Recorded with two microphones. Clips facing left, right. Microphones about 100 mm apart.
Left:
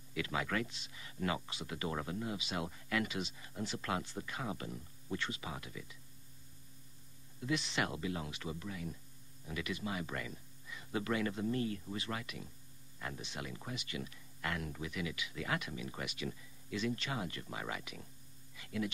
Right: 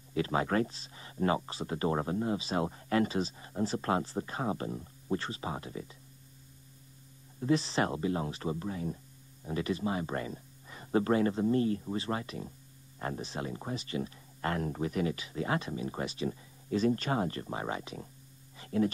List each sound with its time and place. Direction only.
0.1 s speech: 35° right (ahead or behind)
7.3 s speech: 35° right (ahead or behind)
18.6 s a sound: 35° right (ahead or behind)